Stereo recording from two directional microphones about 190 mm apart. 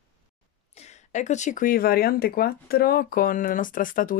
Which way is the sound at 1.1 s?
40° left (ahead or behind).